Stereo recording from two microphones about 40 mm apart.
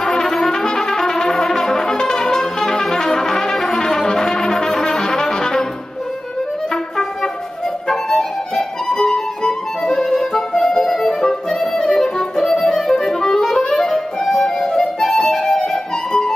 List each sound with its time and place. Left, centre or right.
0.0 s brass instrument: centre
7.9 s music: centre
8.5 s music: centre